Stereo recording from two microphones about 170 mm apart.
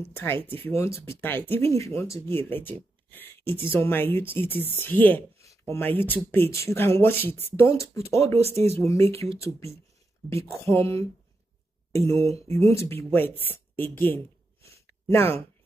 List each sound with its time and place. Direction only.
0.1 s speech: 15° left (ahead or behind)
8.4 s speech: 35° right (ahead or behind)
8.7 s speech: 15° left (ahead or behind)
13.4 s a sound: 10° left (ahead or behind)